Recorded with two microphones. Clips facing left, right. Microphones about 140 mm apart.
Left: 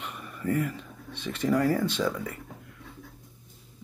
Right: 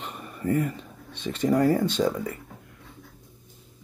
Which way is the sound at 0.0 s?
30° right (ahead or behind).